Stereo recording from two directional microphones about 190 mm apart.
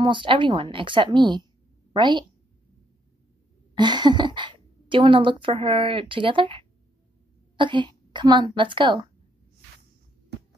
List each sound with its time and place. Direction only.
0.0 s a woman's voice: 25° right (ahead or behind)
3.7 s a woman's voice: 25° right (ahead or behind)